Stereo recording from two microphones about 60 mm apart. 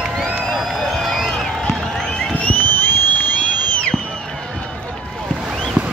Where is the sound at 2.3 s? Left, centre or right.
Left.